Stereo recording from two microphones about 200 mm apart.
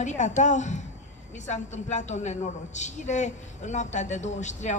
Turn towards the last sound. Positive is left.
turn(degrees=35)  # may be behind; listen again after turning